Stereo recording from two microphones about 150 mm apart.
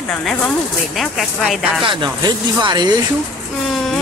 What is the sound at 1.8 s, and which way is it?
Speech, 30° right (ahead or behind).